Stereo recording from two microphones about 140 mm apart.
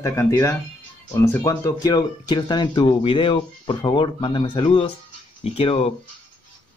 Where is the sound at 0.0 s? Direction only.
20° left (ahead or behind).